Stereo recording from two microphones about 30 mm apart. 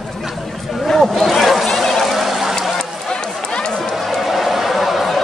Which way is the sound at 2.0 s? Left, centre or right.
Centre.